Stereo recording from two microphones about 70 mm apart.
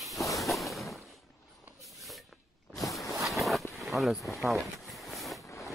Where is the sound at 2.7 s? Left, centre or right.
Left.